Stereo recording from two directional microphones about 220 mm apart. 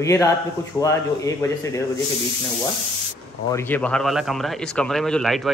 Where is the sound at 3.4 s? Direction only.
10° left (ahead or behind).